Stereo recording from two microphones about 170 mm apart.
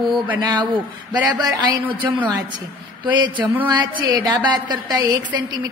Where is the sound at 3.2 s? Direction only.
30° right (ahead or behind).